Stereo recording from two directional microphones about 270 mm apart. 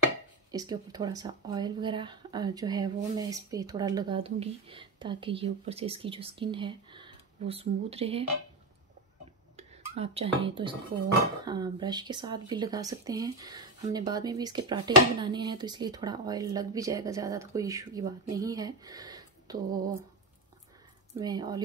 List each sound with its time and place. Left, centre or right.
0.5 s speech: centre
9.6 s speech: right
21.2 s speech: centre